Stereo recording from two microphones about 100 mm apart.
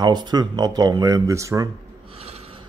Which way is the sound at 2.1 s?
80° right.